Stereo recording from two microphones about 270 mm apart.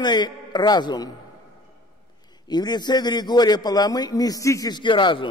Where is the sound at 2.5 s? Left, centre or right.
Centre.